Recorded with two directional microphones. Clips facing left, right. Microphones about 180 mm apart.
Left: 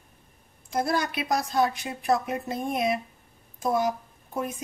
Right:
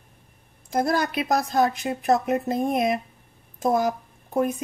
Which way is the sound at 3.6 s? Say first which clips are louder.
Right 3 dB; 45° right (ahead or behind).